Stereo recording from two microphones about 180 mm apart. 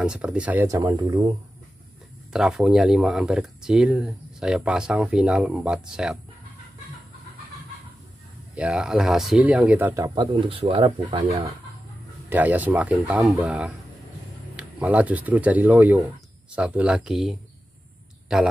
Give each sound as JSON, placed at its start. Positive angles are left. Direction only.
{"t": 0.0, "sound": "speech", "side_deg": -5}
{"t": 2.3, "sound": "speech", "side_deg": 0}
{"t": 8.5, "sound": "speech", "side_deg": -5}
{"t": 10.6, "sound": "speech", "side_deg": -30}
{"t": 12.3, "sound": "speech", "side_deg": -10}